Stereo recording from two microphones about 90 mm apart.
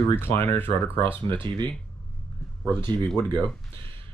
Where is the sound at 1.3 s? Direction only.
60° right (ahead or behind).